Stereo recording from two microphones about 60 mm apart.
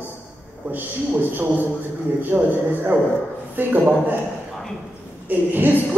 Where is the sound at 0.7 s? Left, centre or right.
Right.